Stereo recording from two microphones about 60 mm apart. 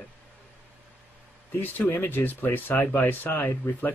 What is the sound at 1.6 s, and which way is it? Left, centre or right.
Speech, left.